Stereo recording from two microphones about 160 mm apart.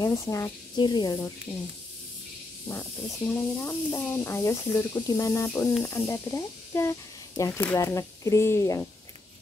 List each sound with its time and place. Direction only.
0.0 s speech: 20° left (ahead or behind)
2.7 s speech: 10° left (ahead or behind)